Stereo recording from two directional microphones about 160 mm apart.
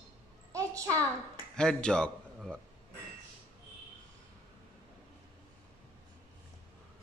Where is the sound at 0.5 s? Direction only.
20° right (ahead or behind).